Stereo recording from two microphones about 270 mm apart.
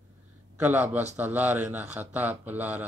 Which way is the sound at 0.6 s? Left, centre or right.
Centre.